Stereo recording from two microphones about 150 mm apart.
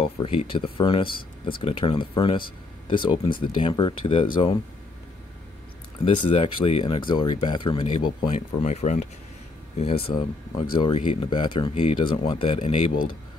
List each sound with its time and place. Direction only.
0.0 s speech: 40° left (ahead or behind)
6.1 s speech: 35° left (ahead or behind); by 9.1 s 50° left (ahead or behind)
9.8 s speech: 40° left (ahead or behind)